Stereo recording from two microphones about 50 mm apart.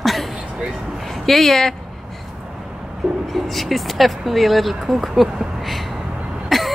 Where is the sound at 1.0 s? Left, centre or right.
Centre.